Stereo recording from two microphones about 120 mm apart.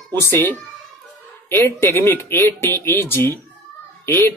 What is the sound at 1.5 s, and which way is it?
Speech, 20° left (ahead or behind).